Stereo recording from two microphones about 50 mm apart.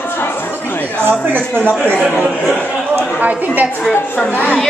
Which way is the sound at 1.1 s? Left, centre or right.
Right.